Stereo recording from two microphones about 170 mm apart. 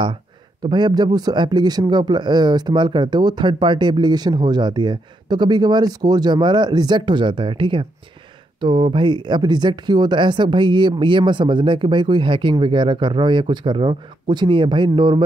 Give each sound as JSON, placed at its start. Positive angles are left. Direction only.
{"t": 0.6, "sound": "a man's voice", "side_deg": -25}